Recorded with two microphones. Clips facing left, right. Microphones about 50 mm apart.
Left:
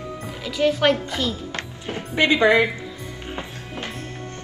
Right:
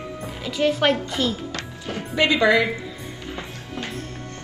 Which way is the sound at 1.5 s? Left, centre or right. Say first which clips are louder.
Even; left.